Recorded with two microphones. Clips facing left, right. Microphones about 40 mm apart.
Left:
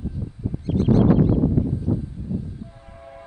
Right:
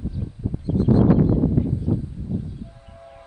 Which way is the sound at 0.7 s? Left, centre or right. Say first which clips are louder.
Even; left.